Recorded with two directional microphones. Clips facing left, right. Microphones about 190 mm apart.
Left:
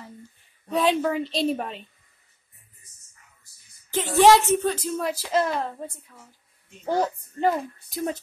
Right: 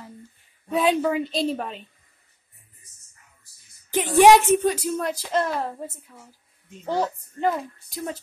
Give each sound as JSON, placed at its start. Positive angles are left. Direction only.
{"t": 0.7, "sound": "a woman's voice", "side_deg": -5}
{"t": 3.9, "sound": "speech", "side_deg": -15}
{"t": 5.0, "sound": "a woman's voice", "side_deg": 5}
{"t": 6.9, "sound": "a child's voice", "side_deg": 15}